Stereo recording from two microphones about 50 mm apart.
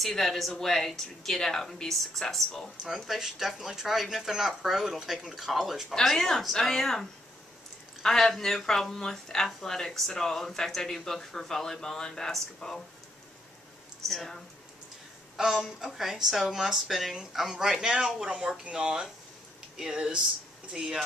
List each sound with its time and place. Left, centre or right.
0.0 s speech: centre
5.9 s speech: centre
14.0 s speech: centre
15.3 s speech: centre